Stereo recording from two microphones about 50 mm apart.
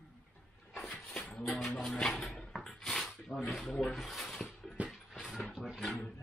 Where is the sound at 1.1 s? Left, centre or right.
Centre.